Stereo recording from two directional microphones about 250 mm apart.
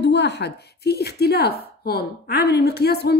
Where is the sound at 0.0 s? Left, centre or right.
Left.